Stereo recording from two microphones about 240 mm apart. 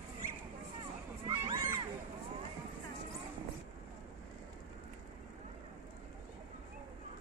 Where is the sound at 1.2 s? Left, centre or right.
Centre.